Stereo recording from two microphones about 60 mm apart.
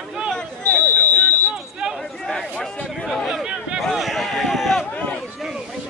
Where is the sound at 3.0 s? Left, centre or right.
Centre.